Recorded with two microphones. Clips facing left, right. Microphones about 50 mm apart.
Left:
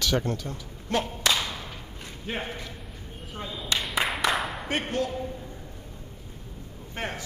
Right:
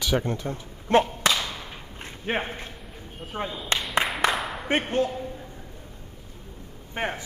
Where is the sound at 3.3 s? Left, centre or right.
Right.